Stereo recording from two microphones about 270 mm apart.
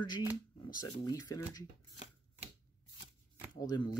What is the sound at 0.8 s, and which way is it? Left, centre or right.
Speech, centre.